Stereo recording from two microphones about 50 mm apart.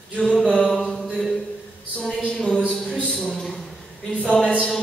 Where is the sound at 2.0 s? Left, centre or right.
Centre.